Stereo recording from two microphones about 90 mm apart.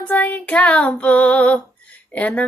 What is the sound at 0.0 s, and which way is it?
Female singing, 15° left (ahead or behind).